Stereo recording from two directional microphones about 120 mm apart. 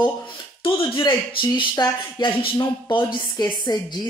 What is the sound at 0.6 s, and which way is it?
A woman's voice, 50° left (ahead or behind).